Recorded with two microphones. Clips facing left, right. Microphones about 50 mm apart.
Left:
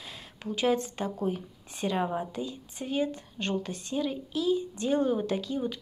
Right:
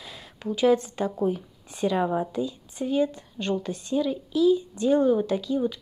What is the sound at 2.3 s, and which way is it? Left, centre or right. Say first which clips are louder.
Speech: right 6 dB; left.